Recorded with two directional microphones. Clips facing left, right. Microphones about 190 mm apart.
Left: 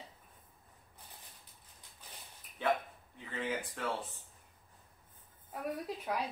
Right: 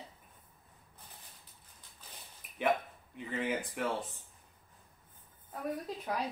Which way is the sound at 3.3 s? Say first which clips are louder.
Right 3 dB; 15° right (ahead or behind).